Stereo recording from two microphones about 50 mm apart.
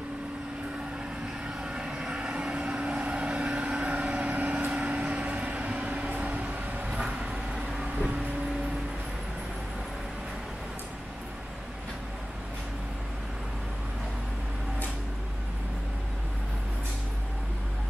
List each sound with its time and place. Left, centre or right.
1.6 s vehicle: centre